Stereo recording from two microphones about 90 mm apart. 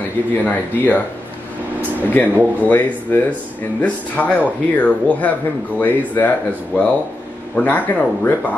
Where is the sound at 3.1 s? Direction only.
25° left (ahead or behind).